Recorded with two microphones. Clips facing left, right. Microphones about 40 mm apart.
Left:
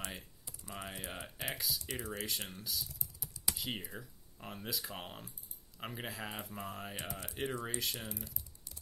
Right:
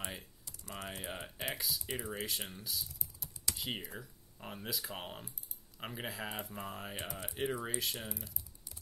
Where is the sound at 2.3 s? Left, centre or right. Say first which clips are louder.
Even; centre.